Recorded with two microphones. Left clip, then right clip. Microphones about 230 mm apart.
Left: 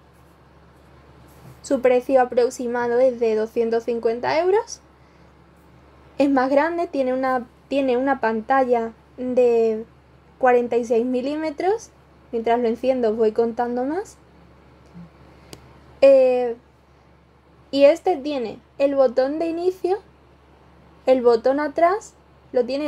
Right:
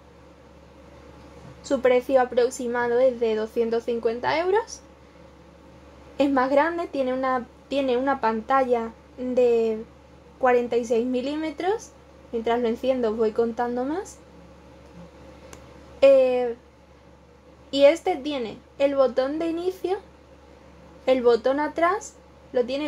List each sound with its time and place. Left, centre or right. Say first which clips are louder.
1.7 s a woman's voice: left 2 dB; centre
6.1 s a woman's voice: left 2 dB; centre
16.0 s a woman's voice: left 3 dB; centre
17.7 s a woman's voice: left 3 dB; centre
21.0 s a woman's voice: left 3 dB; centre